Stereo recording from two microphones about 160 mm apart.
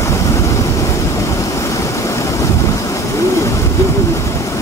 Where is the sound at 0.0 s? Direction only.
20° left (ahead or behind).